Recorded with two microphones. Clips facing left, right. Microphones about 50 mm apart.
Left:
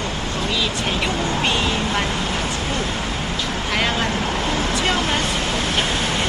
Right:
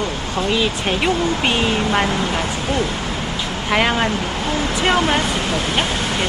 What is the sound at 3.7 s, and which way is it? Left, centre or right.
Speech, right.